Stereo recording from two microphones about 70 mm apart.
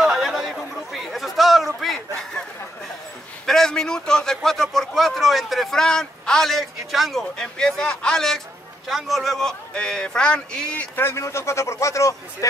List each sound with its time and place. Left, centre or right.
0.0 s chatter: centre
1.8 s a sound: centre
3.4 s a man's voice: centre
8.8 s a man's voice: centre
11.0 s a man's voice: left